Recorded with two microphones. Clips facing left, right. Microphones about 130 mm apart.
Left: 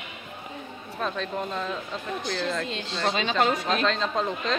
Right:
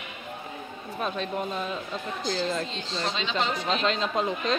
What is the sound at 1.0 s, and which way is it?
Speech, 10° right (ahead or behind).